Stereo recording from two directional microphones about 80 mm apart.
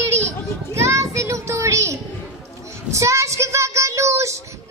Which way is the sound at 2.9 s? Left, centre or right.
Right.